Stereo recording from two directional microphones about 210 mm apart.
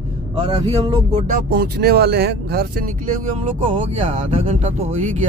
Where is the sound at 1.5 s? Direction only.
50° right (ahead or behind).